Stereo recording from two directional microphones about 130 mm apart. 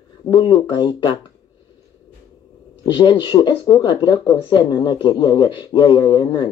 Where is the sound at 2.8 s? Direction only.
35° left (ahead or behind).